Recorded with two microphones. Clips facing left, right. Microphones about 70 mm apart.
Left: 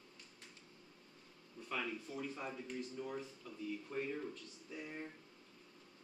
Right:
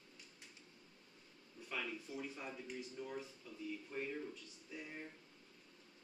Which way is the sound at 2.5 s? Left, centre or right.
Centre.